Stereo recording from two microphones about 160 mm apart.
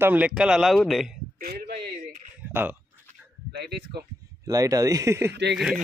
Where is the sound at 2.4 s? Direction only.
10° right (ahead or behind).